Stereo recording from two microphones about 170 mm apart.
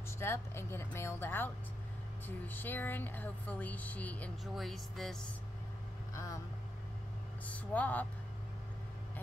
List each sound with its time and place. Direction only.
0.2 s speech: 15° left (ahead or behind)
6.1 s speech: 20° left (ahead or behind)
7.4 s speech: 10° left (ahead or behind)